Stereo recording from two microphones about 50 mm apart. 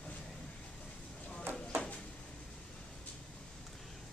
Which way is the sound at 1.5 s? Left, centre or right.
Right.